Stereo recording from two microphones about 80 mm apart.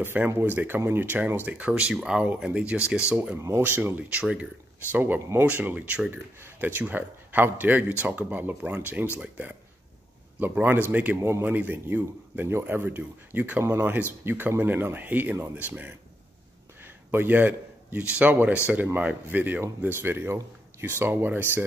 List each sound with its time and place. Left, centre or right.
0.0 s speech: right
3.3 s speech: right
3.6 s speech: right
5.5 s a man's voice: centre
11.1 s speech: right
11.4 s speech: right
17.1 s speech: right